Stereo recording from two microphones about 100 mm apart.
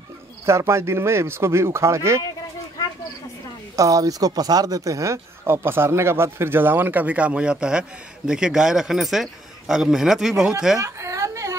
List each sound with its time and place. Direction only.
0.5 s speech: 25° right (ahead or behind)
3.7 s a man's voice: 35° right (ahead or behind); by 10.5 s 5° right (ahead or behind)
10.8 s whimper: 30° right (ahead or behind)